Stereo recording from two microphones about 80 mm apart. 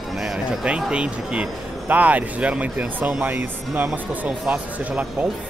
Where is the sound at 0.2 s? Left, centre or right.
Centre.